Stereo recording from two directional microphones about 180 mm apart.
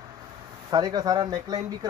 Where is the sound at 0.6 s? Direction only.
20° right (ahead or behind).